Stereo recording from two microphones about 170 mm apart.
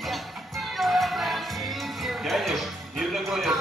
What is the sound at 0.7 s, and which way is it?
Music, centre (ahead or behind).